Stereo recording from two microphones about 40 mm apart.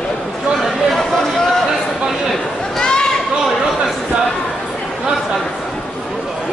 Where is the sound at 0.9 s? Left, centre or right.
Centre.